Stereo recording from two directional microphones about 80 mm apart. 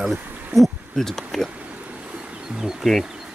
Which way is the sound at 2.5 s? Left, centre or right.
Centre.